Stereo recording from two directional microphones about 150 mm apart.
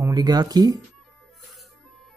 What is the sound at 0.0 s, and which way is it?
Speech, 25° right (ahead or behind).